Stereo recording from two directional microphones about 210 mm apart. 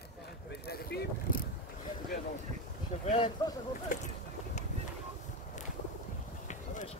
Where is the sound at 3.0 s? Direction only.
30° left (ahead or behind).